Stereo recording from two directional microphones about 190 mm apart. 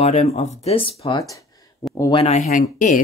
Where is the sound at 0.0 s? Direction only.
35° left (ahead or behind).